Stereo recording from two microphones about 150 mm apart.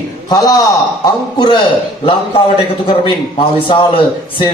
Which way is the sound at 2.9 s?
35° left (ahead or behind).